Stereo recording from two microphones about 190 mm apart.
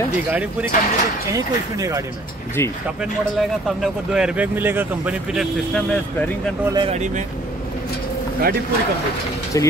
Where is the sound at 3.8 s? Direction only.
5° right (ahead or behind).